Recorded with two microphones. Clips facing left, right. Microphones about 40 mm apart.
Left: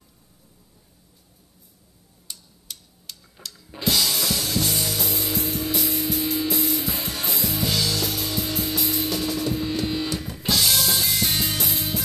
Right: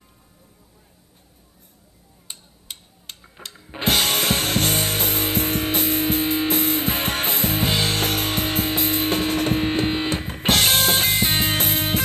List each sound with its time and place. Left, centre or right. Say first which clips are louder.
2.2 s music: right 2 dB; right